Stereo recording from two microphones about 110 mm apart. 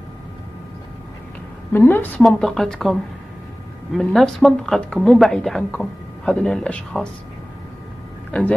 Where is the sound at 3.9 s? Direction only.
Centre (ahead or behind).